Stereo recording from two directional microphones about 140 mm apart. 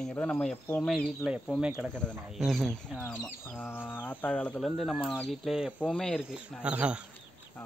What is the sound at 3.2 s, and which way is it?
Speech, 15° left (ahead or behind).